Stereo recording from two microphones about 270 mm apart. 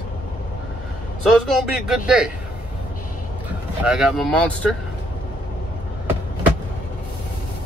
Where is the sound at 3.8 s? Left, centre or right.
Centre.